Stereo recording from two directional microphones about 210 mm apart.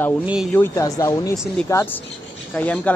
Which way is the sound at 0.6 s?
15° left (ahead or behind).